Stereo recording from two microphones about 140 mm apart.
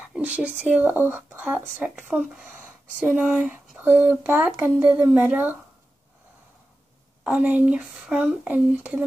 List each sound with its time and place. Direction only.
0.1 s speech: 10° right (ahead or behind)
7.2 s speech: 10° right (ahead or behind)